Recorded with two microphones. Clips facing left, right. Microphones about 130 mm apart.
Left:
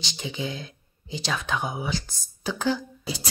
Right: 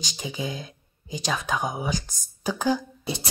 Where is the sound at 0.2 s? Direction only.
15° right (ahead or behind).